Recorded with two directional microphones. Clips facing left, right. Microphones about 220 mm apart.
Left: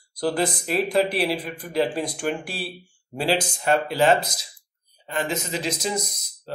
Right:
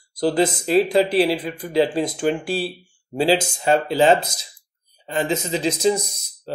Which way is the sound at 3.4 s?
25° right (ahead or behind).